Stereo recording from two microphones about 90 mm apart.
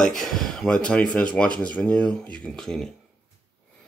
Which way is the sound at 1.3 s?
15° left (ahead or behind).